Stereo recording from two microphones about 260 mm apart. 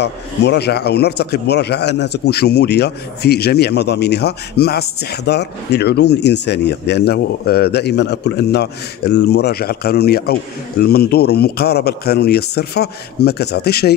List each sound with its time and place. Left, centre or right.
0.0 s speech: left